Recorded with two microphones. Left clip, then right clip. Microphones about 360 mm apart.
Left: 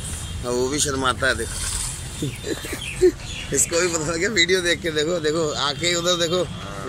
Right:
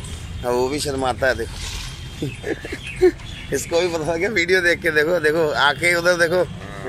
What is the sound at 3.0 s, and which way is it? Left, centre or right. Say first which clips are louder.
Speech: right 2 dB; right.